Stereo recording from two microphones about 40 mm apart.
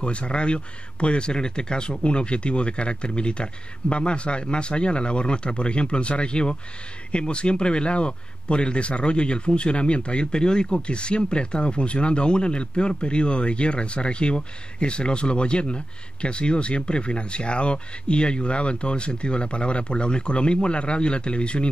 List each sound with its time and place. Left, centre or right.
0.0 s a man's voice: left